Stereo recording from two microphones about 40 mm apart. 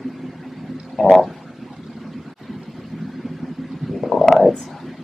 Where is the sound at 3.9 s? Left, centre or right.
Centre.